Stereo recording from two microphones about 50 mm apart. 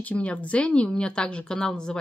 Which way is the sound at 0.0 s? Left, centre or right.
Left.